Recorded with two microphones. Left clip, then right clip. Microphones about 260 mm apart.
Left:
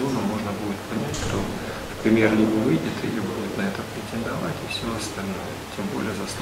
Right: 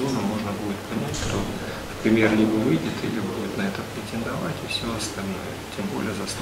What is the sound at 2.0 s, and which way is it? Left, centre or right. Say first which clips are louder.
Speech: even; centre.